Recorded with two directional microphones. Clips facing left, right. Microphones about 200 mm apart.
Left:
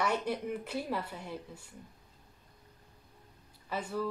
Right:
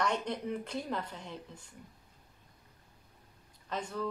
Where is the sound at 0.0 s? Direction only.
5° left (ahead or behind).